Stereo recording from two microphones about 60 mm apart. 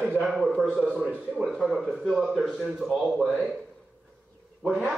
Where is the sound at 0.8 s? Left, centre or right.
Right.